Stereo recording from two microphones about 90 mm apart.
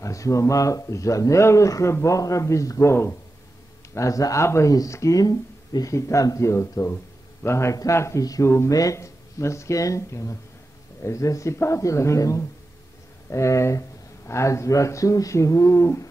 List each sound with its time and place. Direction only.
0.0 s speech: 35° left (ahead or behind)